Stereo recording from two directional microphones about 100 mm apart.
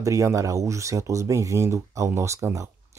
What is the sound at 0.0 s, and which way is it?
Speech, 35° right (ahead or behind).